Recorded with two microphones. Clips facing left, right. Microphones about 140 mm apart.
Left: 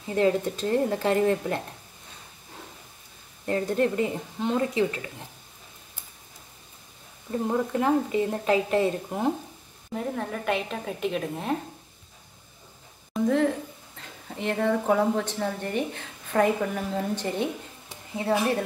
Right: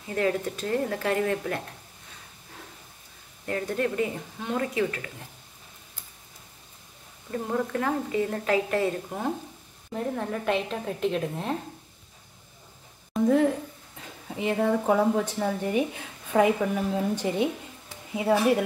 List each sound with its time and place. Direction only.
0.1 s a woman's voice: 25° left (ahead or behind)
3.4 s a woman's voice: 25° left (ahead or behind)
7.2 s a woman's voice: 20° left (ahead or behind)
9.9 s a woman's voice: centre (ahead or behind)
13.1 s a woman's voice: 5° right (ahead or behind)